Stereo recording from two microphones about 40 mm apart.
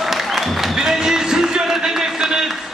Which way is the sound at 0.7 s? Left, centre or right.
Centre.